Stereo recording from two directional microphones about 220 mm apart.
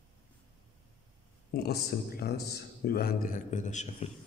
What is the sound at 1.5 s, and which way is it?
A man's voice, 45° left (ahead or behind).